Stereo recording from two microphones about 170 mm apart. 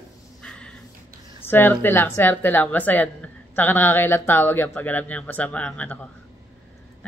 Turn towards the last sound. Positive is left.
turn(degrees=10)  # may be behind; listen again after turning